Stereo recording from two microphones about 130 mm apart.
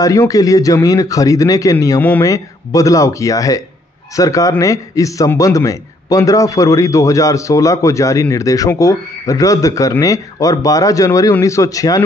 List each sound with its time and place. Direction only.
0.0 s a man's voice: 25° left (ahead or behind)
2.0 s a man's voice: 15° left (ahead or behind)
2.2 s a man's voice: 25° left (ahead or behind)